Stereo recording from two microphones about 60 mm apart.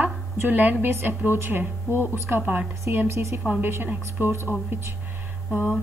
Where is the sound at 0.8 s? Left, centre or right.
Right.